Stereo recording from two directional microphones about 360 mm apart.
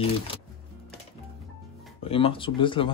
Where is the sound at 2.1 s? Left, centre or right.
Centre.